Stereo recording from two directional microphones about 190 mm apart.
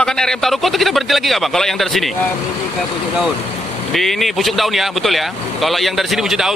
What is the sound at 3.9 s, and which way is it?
Speech, centre (ahead or behind).